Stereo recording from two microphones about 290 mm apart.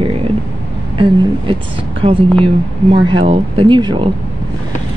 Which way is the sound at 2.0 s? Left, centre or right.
Centre.